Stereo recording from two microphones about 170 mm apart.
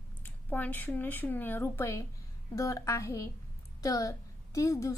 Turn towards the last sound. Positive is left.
turn(degrees=20)  # may be behind; listen again after turning